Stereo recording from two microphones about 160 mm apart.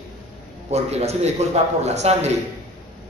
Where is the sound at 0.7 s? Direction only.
40° right (ahead or behind).